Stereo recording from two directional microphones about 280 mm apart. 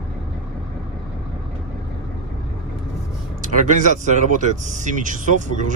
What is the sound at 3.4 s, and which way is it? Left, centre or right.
Speech, right.